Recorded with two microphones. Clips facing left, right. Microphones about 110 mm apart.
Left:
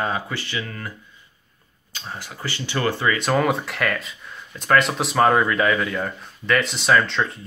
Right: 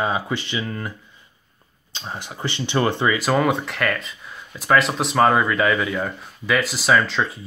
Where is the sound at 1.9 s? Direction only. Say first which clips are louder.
Right 2 dB; 25° right (ahead or behind).